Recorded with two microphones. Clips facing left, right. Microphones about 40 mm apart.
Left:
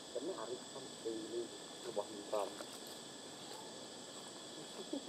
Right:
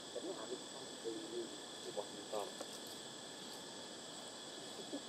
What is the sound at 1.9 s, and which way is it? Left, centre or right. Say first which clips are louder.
Vehicle: left 4 dB; centre.